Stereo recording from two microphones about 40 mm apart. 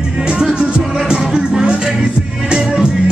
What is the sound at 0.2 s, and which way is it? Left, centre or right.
Music, right.